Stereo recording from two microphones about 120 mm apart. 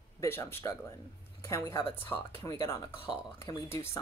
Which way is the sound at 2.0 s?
15° left (ahead or behind).